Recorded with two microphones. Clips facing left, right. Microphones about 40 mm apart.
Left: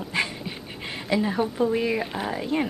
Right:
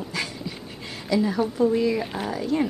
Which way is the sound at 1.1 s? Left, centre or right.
Left.